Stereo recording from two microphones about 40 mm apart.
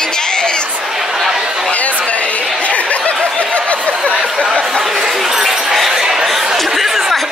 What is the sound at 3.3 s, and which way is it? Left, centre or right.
Snicker, left.